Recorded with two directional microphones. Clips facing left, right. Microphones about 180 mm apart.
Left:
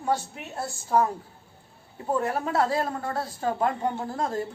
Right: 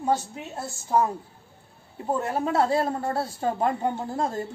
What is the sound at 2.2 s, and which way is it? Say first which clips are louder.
A woman's voice: right 3 dB; 25° right (ahead or behind).